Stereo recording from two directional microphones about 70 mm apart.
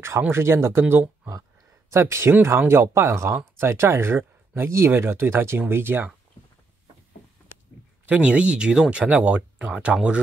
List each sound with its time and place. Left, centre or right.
0.3 s speech: right
1.9 s speech: right
8.1 s speech: centre